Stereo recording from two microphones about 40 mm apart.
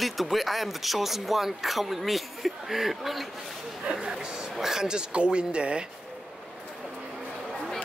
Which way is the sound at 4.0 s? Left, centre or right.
Centre.